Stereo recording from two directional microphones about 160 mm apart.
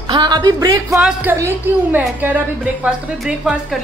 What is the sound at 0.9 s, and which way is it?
A woman's voice, 5° right (ahead or behind).